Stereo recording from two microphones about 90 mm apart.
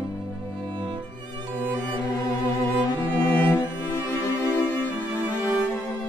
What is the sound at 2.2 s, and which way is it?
Music, 35° left (ahead or behind).